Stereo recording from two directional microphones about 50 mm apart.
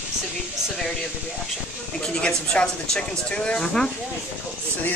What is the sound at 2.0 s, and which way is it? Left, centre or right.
Speech, centre.